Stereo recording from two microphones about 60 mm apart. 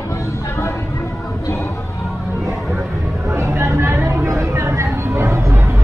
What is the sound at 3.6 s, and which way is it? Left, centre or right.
Music, right.